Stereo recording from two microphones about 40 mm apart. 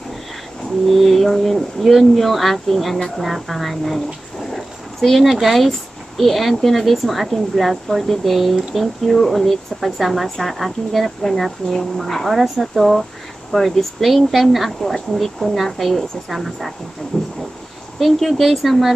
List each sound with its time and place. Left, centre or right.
0.8 s speech: centre
4.6 s dog: centre
5.3 s speech: centre
17.1 s a sound: centre
17.9 s speech: centre